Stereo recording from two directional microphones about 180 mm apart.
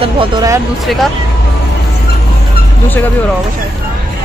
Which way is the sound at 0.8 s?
Centre (ahead or behind).